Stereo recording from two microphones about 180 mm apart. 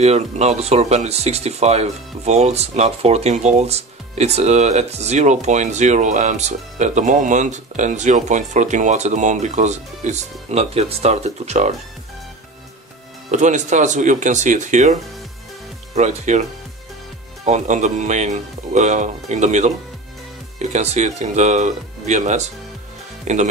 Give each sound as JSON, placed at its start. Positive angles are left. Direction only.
{"t": 0.0, "sound": "speech", "side_deg": -40}
{"t": 13.3, "sound": "speech", "side_deg": -40}
{"t": 17.5, "sound": "speech", "side_deg": -40}